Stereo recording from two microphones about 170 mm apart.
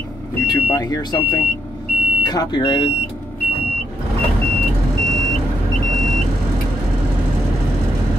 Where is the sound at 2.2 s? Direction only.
25° left (ahead or behind).